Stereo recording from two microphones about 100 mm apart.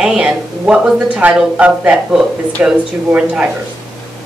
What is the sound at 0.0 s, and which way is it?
Speech, 10° right (ahead or behind).